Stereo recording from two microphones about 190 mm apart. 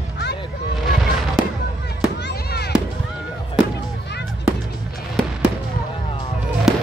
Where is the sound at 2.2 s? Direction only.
60° left (ahead or behind).